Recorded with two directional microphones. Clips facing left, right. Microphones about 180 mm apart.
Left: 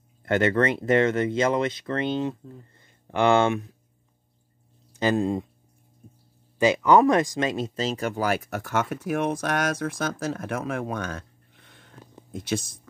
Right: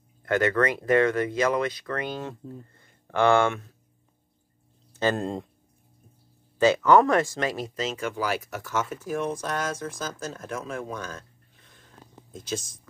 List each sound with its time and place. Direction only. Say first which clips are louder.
0.2 s speech: left 1 dB; 25° left (ahead or behind)
4.9 s speech: left 3 dB; 10° left (ahead or behind)
6.6 s speech: even; 15° left (ahead or behind); by 12.7 s 65° left (ahead or behind)